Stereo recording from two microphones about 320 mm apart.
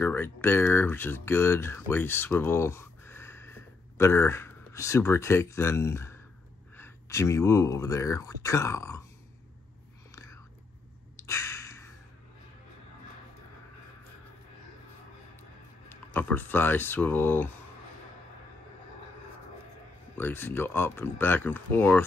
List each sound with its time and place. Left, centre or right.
0.0 s speech: centre
10.1 s whispering: centre
11.1 s a sound: centre
15.9 s speech: centre
20.2 s speech: centre